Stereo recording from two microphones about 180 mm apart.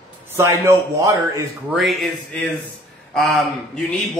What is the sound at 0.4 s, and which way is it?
A man's voice, 15° right (ahead or behind).